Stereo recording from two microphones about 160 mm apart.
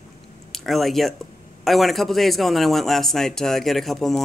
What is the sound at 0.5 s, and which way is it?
A man's voice, centre (ahead or behind).